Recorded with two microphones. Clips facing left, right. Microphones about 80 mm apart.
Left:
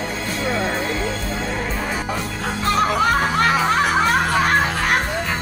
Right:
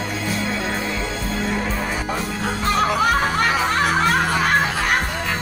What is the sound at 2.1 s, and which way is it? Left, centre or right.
Music, centre.